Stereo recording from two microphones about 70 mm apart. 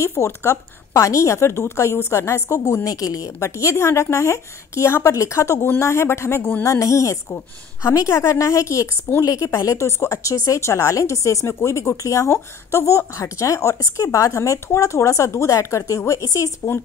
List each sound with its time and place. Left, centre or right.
0.0 s a woman's voice: left
3.3 s a woman's voice: left
6.6 s a woman's voice: left
9.2 s speech: left
9.7 s a woman's voice: left
16.3 s speech: left